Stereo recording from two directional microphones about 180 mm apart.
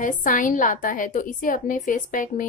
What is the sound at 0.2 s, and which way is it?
A woman's voice, 50° left (ahead or behind).